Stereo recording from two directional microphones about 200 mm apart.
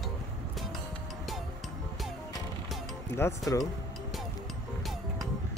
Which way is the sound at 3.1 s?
15° left (ahead or behind).